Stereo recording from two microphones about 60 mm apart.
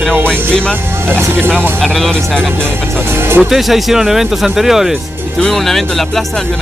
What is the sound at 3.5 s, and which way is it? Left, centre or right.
Speech, centre.